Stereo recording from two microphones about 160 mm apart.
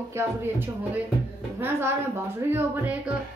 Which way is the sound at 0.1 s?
15° right (ahead or behind).